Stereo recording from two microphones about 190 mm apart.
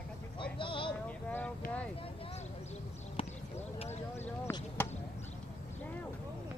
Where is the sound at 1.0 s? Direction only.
10° left (ahead or behind).